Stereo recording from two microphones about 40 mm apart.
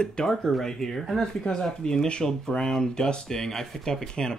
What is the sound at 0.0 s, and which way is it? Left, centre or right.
Speech, centre.